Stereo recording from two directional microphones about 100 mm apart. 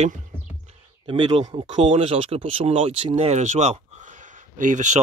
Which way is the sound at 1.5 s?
60° right (ahead or behind).